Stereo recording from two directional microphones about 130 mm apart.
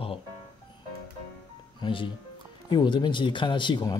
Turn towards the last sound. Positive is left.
turn(degrees=35)  # may be behind; listen again after turning